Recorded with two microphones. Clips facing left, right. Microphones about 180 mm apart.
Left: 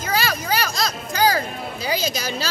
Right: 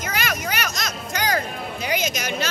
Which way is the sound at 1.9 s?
30° left (ahead or behind).